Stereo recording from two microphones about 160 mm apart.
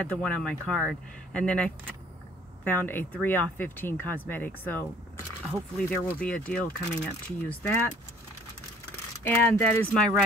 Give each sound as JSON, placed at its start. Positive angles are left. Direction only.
{"t": 0.0, "sound": "speech", "side_deg": 5}
{"t": 9.2, "sound": "speech", "side_deg": 10}